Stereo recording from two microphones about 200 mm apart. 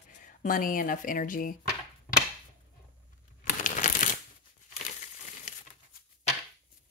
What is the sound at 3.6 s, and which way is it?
Shuffling cards, 40° left (ahead or behind).